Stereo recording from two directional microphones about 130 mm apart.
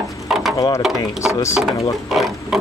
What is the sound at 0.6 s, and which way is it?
Speech, 25° left (ahead or behind).